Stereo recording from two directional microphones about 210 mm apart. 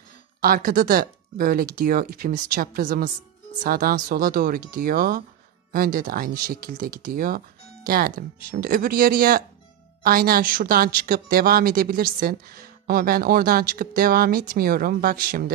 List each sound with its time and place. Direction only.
0.4 s a woman's voice: 45° right (ahead or behind)